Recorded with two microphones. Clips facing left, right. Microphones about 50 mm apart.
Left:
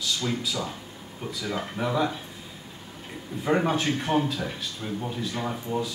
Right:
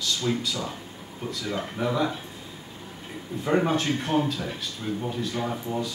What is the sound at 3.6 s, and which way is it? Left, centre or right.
A man's voice, centre.